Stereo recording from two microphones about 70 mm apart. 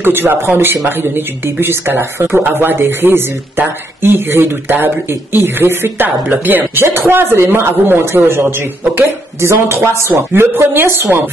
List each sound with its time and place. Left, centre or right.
0.0 s speech: right